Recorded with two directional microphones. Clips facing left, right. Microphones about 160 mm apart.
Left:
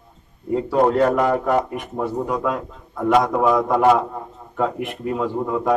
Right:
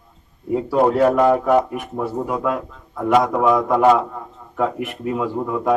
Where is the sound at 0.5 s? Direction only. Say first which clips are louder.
Even; 5° right (ahead or behind).